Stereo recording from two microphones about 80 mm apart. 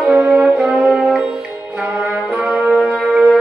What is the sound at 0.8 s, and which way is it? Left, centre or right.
Music, centre.